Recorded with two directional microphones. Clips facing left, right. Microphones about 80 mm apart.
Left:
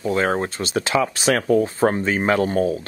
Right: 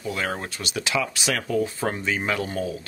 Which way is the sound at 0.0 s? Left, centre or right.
Left.